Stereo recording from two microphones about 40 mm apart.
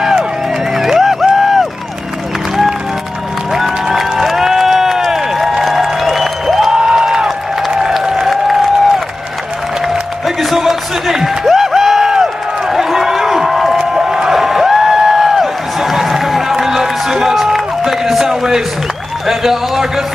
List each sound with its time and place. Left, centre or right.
0.7 s music: centre
3.5 s crowd: centre
5.5 s music: centre
6.7 s a sound: right
7.2 s applause: centre
10.2 s music: centre
13.7 s a sound: centre
17.6 s run: centre
19.2 s a sound: centre